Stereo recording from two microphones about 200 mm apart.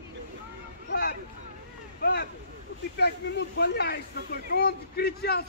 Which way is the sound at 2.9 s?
55° left (ahead or behind).